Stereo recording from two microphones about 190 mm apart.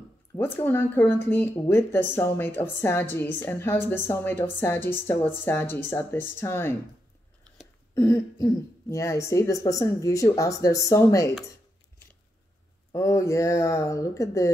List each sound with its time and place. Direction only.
0.4 s speech: 10° left (ahead or behind)
7.9 s speech: 15° left (ahead or behind)
12.9 s speech: 15° left (ahead or behind)